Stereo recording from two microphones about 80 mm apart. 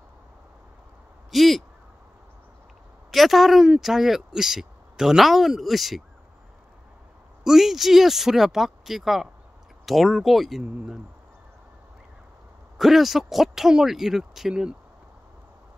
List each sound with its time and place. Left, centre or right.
1.3 s a sound: centre
3.1 s a woman's voice: centre
7.4 s speech: centre
12.7 s speech: centre